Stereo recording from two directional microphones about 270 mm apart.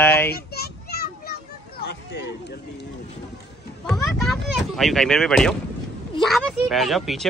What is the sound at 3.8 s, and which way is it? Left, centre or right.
Speech, centre.